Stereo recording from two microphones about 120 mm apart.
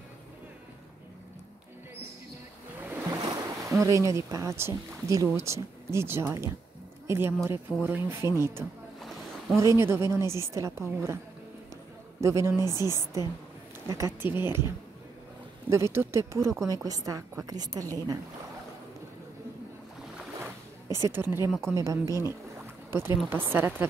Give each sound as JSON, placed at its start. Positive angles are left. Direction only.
{"t": 2.8, "sound": "ocean", "side_deg": -15}
{"t": 3.3, "sound": "a woman's voice", "side_deg": -25}
{"t": 12.2, "sound": "a woman's voice", "side_deg": -20}
{"t": 15.7, "sound": "a woman's voice", "side_deg": -20}
{"t": 20.3, "sound": "boat", "side_deg": -20}
{"t": 21.5, "sound": "speech", "side_deg": 5}
{"t": 21.7, "sound": "a woman's voice", "side_deg": -25}